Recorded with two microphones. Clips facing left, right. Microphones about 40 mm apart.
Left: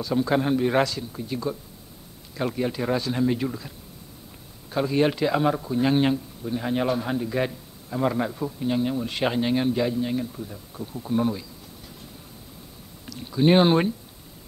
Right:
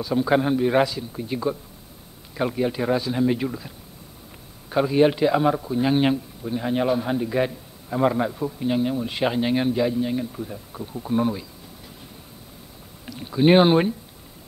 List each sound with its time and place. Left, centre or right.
0.0 s speech: centre
13.0 s speech: centre